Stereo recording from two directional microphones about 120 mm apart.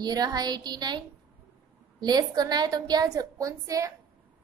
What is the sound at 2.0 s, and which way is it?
A woman's voice, 35° right (ahead or behind).